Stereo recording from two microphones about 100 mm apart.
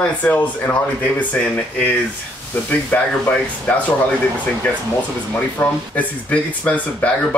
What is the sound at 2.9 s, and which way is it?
Speech, 15° left (ahead or behind).